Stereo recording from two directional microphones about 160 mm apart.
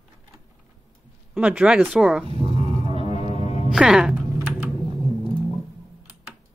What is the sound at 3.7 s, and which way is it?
Speech, 5° right (ahead or behind).